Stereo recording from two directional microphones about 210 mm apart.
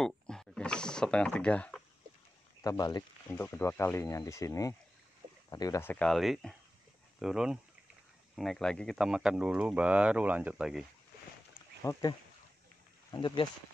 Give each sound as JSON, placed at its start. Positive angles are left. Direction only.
{"t": 0.0, "sound": "mechanisms", "side_deg": 0}
{"t": 2.6, "sound": "speech", "side_deg": 15}
{"t": 11.8, "sound": "speech", "side_deg": 10}
{"t": 13.1, "sound": "speech", "side_deg": 20}